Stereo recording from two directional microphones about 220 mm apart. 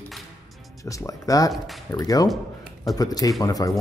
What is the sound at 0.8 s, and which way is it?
Speech, 15° left (ahead or behind).